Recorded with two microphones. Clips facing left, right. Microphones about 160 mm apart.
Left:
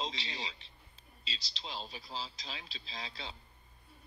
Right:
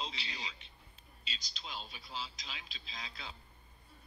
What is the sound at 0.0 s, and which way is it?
Music, 30° left (ahead or behind).